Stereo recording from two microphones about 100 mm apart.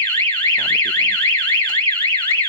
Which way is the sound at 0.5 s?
15° left (ahead or behind).